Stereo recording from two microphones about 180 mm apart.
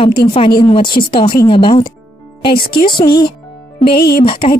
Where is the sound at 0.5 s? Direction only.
25° left (ahead or behind).